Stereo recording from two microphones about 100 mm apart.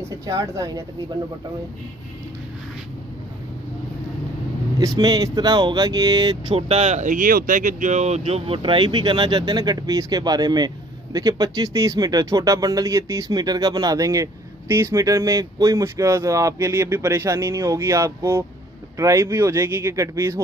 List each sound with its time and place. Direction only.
0.0 s speech: 35° right (ahead or behind)
4.7 s speech: 40° right (ahead or behind)
6.5 s speech: 85° right
8.0 s speech: 90° right; by 20.4 s 30° right (ahead or behind)